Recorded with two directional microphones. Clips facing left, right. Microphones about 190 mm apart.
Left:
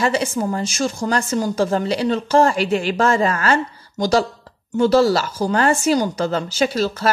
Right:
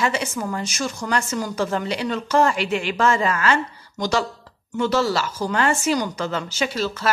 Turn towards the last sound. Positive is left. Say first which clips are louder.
# left 5 dB
turn(degrees=40)  # may be behind; listen again after turning